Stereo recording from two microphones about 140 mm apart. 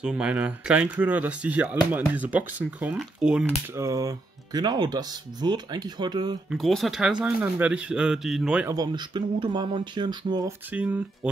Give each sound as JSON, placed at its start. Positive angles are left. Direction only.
{"t": 0.0, "sound": "speech", "side_deg": -5}
{"t": 3.7, "sound": "speech", "side_deg": -20}
{"t": 6.5, "sound": "speech", "side_deg": 0}
{"t": 8.6, "sound": "speech", "side_deg": -30}
{"t": 10.7, "sound": "speech", "side_deg": -10}